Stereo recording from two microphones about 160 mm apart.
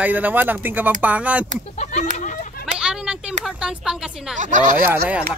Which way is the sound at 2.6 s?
5° right (ahead or behind).